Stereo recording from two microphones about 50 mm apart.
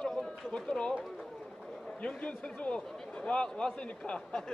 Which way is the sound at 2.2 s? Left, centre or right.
Left.